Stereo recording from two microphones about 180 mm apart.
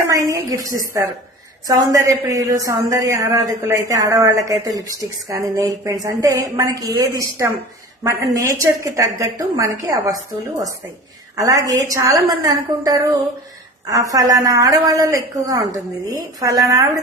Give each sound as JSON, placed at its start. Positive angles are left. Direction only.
{"t": 0.0, "sound": "a woman's voice", "side_deg": -20}